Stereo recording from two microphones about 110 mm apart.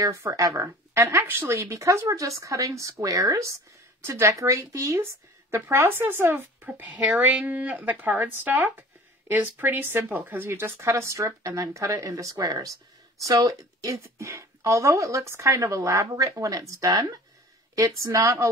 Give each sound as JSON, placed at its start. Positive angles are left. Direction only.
{"t": 0.0, "sound": "a woman's voice", "side_deg": -30}